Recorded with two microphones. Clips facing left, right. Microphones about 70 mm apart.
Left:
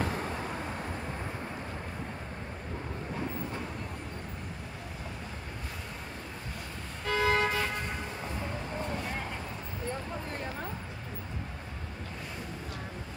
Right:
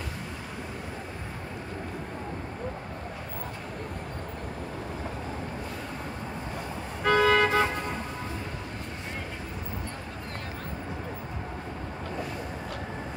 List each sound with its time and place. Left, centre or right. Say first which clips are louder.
7.1 s vehicle: right 6 dB; right